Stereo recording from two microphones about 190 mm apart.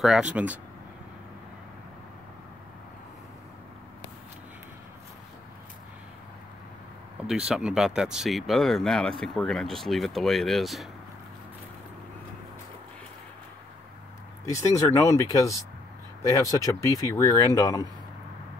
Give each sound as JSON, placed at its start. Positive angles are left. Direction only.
{"t": 0.0, "sound": "speech", "side_deg": -5}
{"t": 7.2, "sound": "speech", "side_deg": -5}
{"t": 14.4, "sound": "speech", "side_deg": 15}